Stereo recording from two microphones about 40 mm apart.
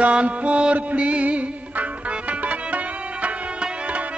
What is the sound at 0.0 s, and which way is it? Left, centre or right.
Music, right.